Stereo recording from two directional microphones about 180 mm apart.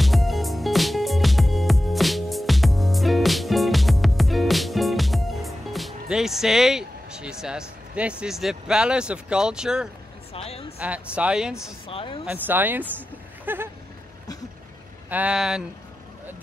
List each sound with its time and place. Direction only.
0.0 s music: centre (ahead or behind)
10.3 s a woman's voice: 30° left (ahead or behind)
10.8 s speech: 5° right (ahead or behind)
11.9 s a woman's voice: 30° left (ahead or behind)
12.3 s speech: 10° right (ahead or behind)
15.0 s speech: 10° right (ahead or behind)